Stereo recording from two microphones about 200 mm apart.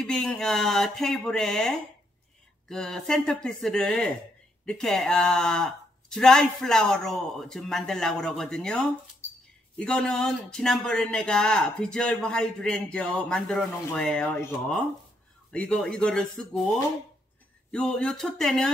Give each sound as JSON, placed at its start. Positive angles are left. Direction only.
{"t": 0.0, "sound": "speech", "side_deg": 5}
{"t": 17.6, "sound": "speech", "side_deg": 5}